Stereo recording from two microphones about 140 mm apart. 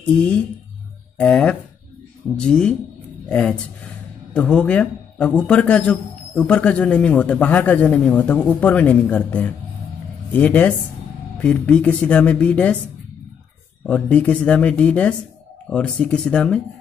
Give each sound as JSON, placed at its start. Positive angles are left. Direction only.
{"t": 1.1, "sound": "a man's voice", "side_deg": 10}
{"t": 13.8, "sound": "a man's voice", "side_deg": 10}